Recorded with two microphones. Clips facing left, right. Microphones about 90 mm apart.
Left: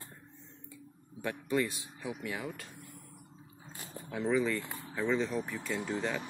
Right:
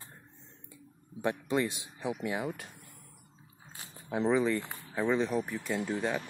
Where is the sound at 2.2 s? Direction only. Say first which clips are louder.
Right 5 dB; 25° right (ahead or behind).